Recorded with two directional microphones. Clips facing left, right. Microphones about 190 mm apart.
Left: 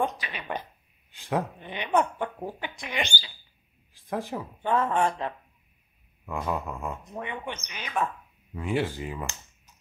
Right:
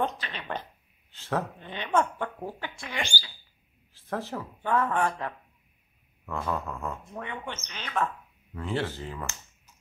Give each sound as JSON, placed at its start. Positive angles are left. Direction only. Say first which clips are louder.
{"t": 0.0, "sound": "speech", "louder": "left 1 dB", "side_deg": 10}